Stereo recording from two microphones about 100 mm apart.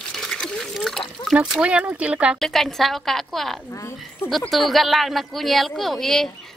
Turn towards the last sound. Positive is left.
turn(degrees=5)  # may be behind; listen again after turning